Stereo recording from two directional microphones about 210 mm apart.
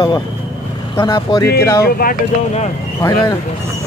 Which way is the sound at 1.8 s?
45° left (ahead or behind).